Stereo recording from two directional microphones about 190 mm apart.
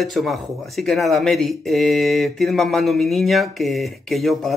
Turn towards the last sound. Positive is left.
turn(degrees=0)  # may be behind; listen again after turning